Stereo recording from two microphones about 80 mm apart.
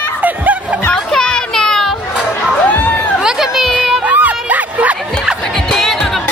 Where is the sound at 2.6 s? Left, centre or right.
Left.